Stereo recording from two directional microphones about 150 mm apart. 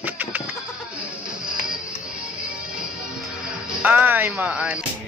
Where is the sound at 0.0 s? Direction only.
10° right (ahead or behind).